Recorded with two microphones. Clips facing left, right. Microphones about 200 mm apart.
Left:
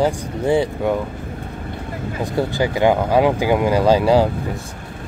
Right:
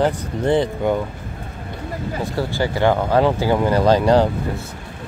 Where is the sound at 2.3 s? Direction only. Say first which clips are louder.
Left 3 dB; 15° left (ahead or behind).